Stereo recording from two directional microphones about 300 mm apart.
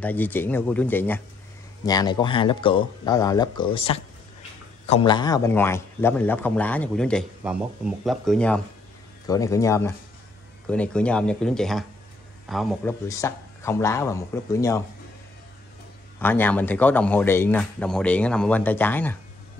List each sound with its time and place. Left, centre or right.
0.0 s a man's voice: centre
16.2 s a man's voice: centre